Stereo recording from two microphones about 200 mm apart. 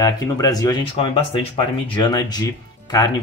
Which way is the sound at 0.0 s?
20° left (ahead or behind).